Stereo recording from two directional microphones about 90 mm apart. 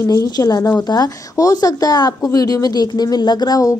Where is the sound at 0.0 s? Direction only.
35° left (ahead or behind).